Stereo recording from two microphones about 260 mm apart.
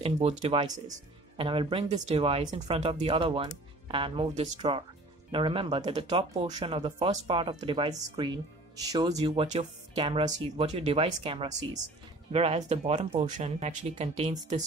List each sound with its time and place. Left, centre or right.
0.0 s speech: right